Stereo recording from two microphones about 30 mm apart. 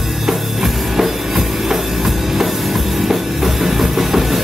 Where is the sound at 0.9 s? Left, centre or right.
Centre.